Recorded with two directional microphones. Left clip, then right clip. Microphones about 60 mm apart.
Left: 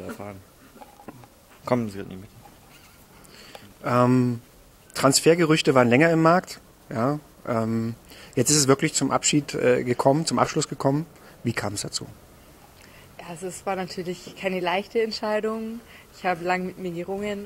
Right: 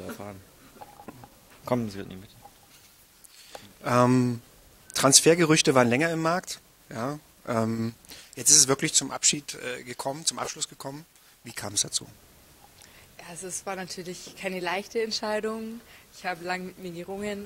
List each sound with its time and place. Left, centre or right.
0.0 s speech: centre
1.6 s speech: centre
3.8 s a woman's voice: right
11.6 s speech: centre
13.2 s a woman's voice: centre